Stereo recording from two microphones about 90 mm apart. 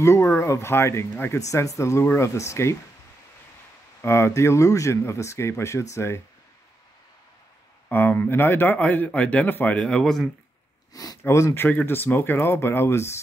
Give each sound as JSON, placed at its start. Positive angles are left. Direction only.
{"t": 0.0, "sound": "speech", "side_deg": 35}
{"t": 1.4, "sound": "speech", "side_deg": 35}
{"t": 4.0, "sound": "speech", "side_deg": 30}
{"t": 7.9, "sound": "speech", "side_deg": 20}
{"t": 10.9, "sound": "speech", "side_deg": 45}
{"t": 11.2, "sound": "speech", "side_deg": 30}